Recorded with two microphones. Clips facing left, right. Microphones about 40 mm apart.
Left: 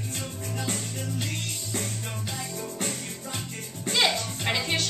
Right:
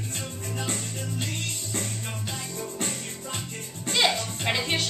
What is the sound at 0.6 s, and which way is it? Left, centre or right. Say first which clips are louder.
Music: even; right.